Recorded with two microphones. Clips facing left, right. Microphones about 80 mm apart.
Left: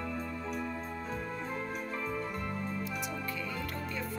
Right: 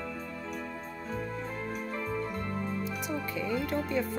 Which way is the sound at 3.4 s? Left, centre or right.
Right.